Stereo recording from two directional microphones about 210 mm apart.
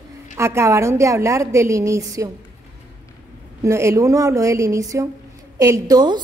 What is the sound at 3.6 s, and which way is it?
A woman's voice, 15° right (ahead or behind).